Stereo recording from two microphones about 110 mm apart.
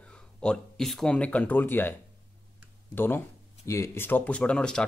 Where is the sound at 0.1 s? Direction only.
5° left (ahead or behind).